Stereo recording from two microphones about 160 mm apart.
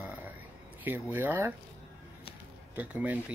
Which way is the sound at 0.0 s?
10° right (ahead or behind).